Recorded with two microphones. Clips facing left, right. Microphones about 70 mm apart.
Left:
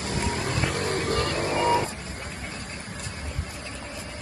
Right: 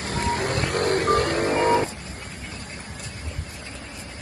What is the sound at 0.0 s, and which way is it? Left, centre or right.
Music, right.